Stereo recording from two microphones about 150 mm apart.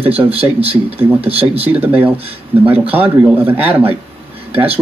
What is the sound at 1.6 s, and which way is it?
Speech, 10° right (ahead or behind).